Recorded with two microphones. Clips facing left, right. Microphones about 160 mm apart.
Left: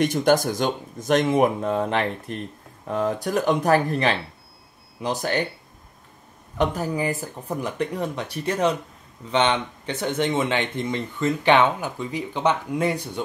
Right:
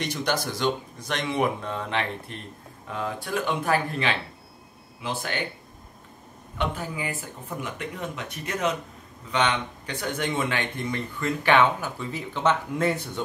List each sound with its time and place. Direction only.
0.0 s speech: 50° left (ahead or behind)
6.6 s speech: 40° left (ahead or behind); by 13.2 s 15° left (ahead or behind)